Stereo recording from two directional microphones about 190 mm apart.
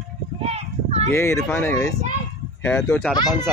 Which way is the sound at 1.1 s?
15° left (ahead or behind).